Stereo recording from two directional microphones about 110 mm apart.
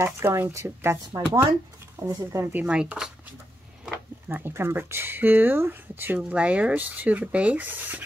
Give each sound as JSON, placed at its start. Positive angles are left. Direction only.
{"t": 0.0, "sound": "speech", "side_deg": -25}
{"t": 2.6, "sound": "speech", "side_deg": -10}
{"t": 4.3, "sound": "speech", "side_deg": -20}